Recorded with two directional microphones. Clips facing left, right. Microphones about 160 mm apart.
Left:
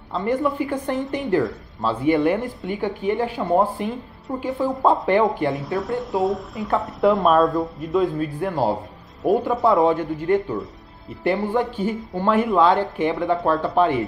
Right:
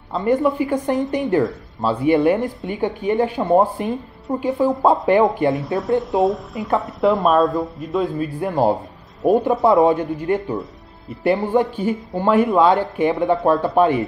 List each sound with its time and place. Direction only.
0.2 s speech: 15° right (ahead or behind)
1.4 s speech: centre (ahead or behind)
2.0 s speech: 15° right (ahead or behind)
5.6 s speech: centre (ahead or behind)
8.4 s speech: 20° right (ahead or behind)